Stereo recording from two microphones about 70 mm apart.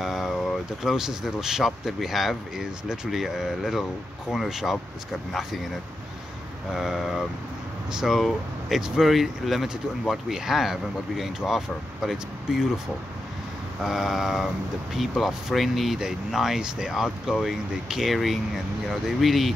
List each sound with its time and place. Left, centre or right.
0.0 s boat: centre
0.8 s speech: centre
6.7 s speech: centre
13.8 s speech: centre